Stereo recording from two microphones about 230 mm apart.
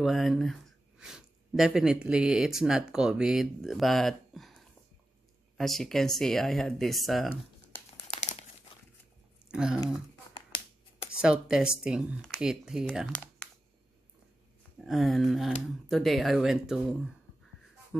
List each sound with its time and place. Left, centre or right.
0.0 s speech: centre
8.0 s crumpling: left
9.5 s speech: centre
11.1 s speech: centre
14.8 s speech: centre